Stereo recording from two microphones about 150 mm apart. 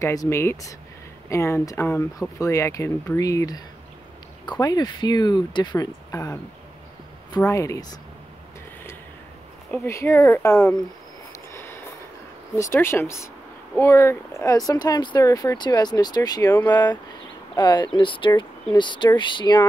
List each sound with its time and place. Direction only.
0.0 s speech: 20° left (ahead or behind)
9.7 s speech: 15° left (ahead or behind)
11.5 s a sound: 15° left (ahead or behind)
12.5 s speech: 20° left (ahead or behind)
17.6 s speech: 30° left (ahead or behind)